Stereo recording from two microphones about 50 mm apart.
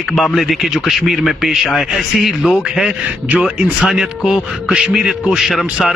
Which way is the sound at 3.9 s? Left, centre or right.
Centre.